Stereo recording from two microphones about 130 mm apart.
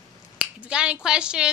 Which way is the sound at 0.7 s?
5° right (ahead or behind).